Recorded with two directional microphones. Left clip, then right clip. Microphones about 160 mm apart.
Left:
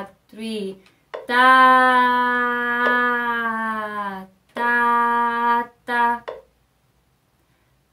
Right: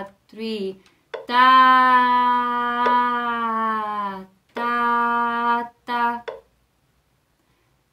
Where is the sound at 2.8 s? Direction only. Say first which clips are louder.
Even; 15° right (ahead or behind).